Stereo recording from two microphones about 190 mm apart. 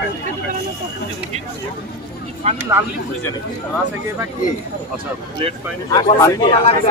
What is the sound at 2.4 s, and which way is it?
Speech, 35° right (ahead or behind).